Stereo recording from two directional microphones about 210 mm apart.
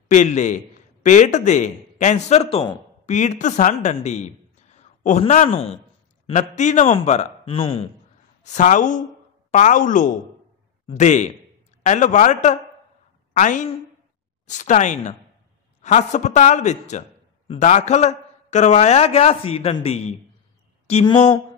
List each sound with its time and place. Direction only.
0.1 s a man's voice: 35° left (ahead or behind)